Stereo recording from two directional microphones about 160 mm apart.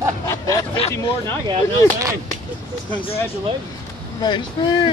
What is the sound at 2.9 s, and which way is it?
Speech, 35° left (ahead or behind).